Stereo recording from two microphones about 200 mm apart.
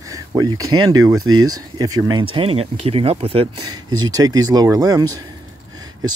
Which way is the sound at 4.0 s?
20° right (ahead or behind).